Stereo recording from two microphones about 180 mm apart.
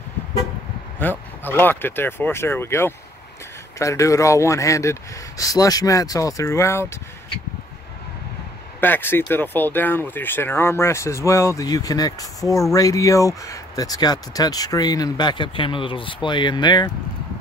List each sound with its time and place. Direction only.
0.9 s speech: 10° left (ahead or behind)
8.8 s speech: 10° left (ahead or behind)